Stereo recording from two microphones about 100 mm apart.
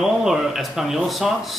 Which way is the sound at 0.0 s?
5° right (ahead or behind).